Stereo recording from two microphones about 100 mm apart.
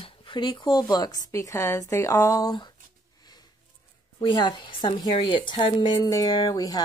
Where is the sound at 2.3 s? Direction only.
45° left (ahead or behind).